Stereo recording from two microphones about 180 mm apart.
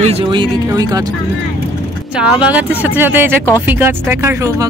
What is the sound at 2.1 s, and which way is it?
Speech, 5° right (ahead or behind).